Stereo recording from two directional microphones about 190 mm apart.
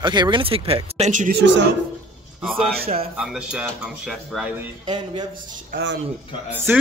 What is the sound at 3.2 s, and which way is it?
Speech, 5° right (ahead or behind).